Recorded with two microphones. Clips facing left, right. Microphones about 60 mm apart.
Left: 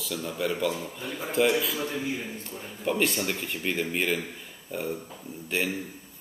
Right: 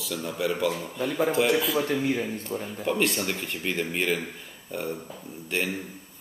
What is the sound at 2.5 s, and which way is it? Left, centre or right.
Speech, right.